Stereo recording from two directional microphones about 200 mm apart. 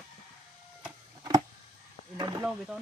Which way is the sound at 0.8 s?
15° right (ahead or behind).